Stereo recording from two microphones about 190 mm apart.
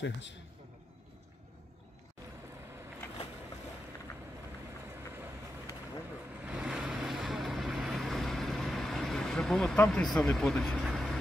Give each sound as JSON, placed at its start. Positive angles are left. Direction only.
{"t": 0.0, "sound": "a man's voice", "side_deg": 70}
{"t": 6.4, "sound": "vehicle", "side_deg": -5}